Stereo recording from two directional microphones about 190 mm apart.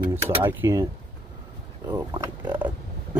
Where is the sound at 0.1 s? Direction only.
10° right (ahead or behind).